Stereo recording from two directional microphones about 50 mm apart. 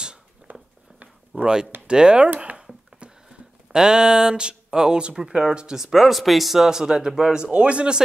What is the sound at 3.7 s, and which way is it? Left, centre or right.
Speech, centre.